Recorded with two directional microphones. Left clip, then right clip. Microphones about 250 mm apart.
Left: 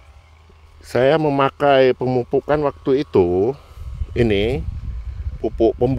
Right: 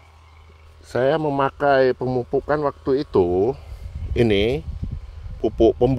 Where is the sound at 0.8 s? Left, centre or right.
Left.